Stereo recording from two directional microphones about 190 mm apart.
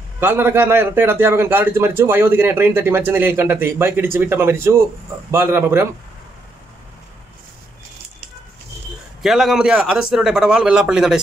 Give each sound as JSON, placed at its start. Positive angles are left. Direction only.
{"t": 0.2, "sound": "a man's voice", "side_deg": -10}
{"t": 9.2, "sound": "speech", "side_deg": 0}